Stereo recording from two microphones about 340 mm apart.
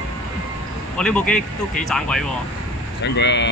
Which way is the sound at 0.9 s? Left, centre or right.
Centre.